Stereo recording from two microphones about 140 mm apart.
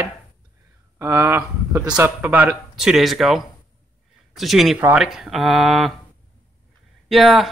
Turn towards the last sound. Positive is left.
turn(degrees=0)  # may be behind; listen again after turning